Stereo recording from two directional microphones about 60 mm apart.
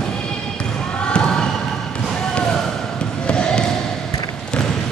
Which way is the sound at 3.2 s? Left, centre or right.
Centre.